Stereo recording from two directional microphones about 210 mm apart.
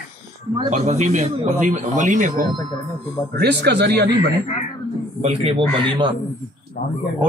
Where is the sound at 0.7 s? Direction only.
35° right (ahead or behind).